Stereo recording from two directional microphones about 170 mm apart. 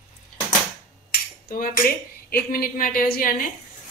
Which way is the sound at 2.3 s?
60° left (ahead or behind).